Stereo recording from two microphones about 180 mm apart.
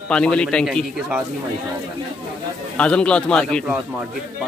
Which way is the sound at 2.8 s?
5° left (ahead or behind).